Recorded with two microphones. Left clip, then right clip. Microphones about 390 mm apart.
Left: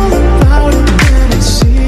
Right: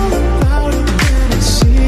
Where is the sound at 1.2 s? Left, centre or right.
Left.